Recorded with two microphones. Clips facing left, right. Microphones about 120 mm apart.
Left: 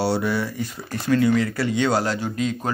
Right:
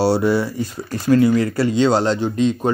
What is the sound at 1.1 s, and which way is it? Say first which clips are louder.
Speech: right 4 dB; 30° right (ahead or behind).